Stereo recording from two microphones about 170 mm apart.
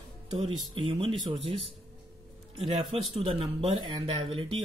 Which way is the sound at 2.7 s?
35° right (ahead or behind).